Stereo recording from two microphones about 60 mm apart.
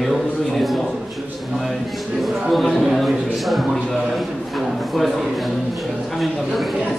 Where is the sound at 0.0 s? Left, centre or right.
Centre.